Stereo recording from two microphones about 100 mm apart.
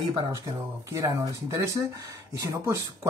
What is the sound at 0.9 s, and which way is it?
Speech, 35° right (ahead or behind).